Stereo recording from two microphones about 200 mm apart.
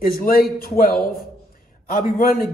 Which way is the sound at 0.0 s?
45° left (ahead or behind).